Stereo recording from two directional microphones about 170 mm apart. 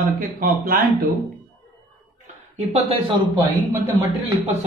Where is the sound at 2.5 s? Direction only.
35° right (ahead or behind).